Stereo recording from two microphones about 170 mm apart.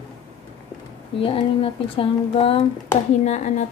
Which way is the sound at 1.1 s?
30° left (ahead or behind).